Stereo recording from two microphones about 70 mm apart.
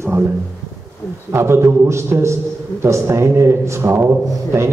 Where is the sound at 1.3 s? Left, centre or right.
Right.